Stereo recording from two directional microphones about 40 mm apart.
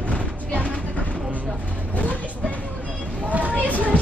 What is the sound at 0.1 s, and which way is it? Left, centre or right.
Music, left.